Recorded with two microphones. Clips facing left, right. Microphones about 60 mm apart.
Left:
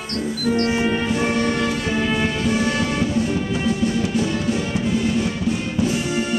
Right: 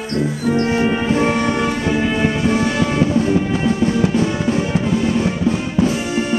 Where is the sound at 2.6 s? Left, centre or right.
Right.